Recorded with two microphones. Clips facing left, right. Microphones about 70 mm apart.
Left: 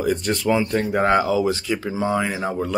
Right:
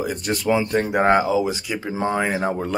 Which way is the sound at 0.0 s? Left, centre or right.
Centre.